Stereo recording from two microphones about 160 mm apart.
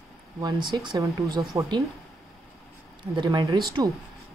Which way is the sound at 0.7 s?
25° right (ahead or behind).